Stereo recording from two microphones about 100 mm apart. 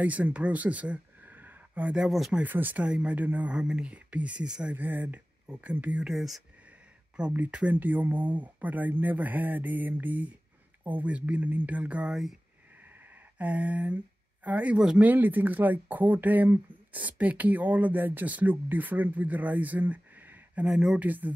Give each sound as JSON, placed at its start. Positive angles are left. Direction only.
{"t": 0.0, "sound": "speech", "side_deg": -15}
{"t": 2.4, "sound": "speech", "side_deg": -15}
{"t": 7.2, "sound": "speech", "side_deg": -15}
{"t": 13.4, "sound": "speech", "side_deg": -15}
{"t": 20.6, "sound": "speech", "side_deg": -5}
{"t": 21.0, "sound": "speech", "side_deg": -15}